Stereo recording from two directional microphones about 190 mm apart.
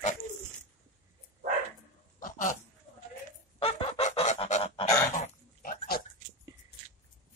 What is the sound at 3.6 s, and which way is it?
Goose, 30° left (ahead or behind).